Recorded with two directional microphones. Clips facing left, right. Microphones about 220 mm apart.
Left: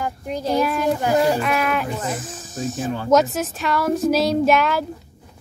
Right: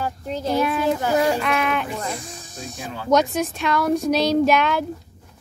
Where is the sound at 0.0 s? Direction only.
15° left (ahead or behind).